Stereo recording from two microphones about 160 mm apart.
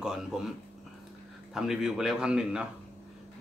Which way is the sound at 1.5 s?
5° right (ahead or behind).